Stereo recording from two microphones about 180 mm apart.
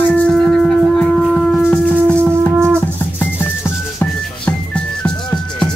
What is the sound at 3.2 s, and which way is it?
Music, 10° left (ahead or behind).